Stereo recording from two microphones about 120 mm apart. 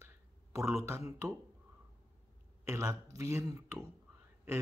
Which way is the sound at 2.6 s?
25° right (ahead or behind).